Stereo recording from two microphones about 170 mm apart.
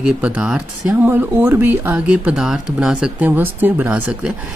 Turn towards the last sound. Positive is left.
turn(degrees=-10)  # may be behind; listen again after turning